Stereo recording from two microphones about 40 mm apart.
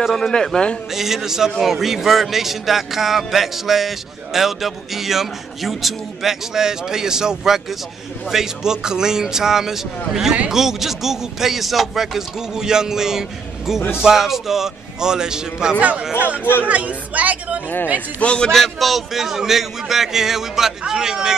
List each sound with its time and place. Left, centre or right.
0.0 s a man's voice: centre
0.3 s a man's voice: centre
0.9 s a man's voice: centre
6.5 s a man's voice: centre
16.3 s speech: left
16.6 s speech: right
18.2 s a man's voice: left
18.5 s a man's voice: centre